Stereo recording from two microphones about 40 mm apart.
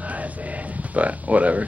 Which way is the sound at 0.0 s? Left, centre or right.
Right.